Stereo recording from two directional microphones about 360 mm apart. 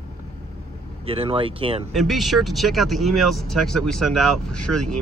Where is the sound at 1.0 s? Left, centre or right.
Centre.